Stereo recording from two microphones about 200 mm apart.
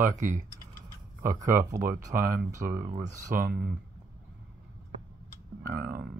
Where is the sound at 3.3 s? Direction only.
45° right (ahead or behind).